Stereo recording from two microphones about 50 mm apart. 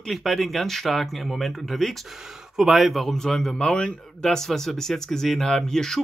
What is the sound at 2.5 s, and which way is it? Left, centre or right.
Speech, centre.